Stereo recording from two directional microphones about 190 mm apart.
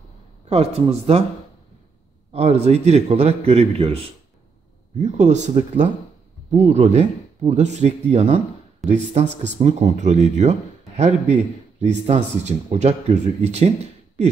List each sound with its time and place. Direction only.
0.5 s speech: 35° right (ahead or behind)
2.3 s speech: 35° right (ahead or behind)